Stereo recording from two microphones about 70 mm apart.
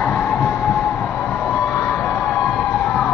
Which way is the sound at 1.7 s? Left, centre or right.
Centre.